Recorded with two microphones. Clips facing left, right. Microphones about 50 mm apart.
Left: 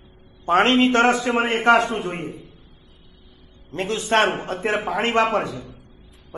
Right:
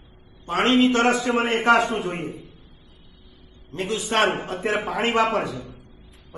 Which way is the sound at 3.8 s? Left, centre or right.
Left.